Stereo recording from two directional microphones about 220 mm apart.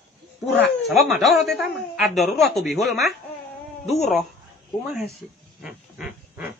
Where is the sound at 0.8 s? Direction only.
Centre (ahead or behind).